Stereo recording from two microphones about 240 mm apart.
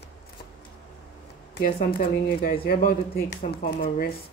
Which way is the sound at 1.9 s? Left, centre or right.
Left.